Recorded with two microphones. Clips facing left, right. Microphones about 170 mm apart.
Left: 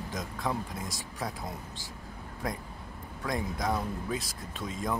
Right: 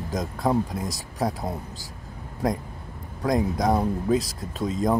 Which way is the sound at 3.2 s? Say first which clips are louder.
Right 9 dB; 40° right (ahead or behind).